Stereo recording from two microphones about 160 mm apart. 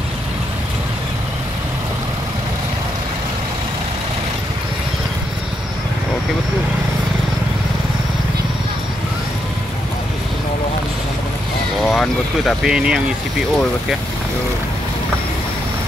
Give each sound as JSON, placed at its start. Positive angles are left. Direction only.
{"t": 11.8, "sound": "vehicle", "side_deg": 0}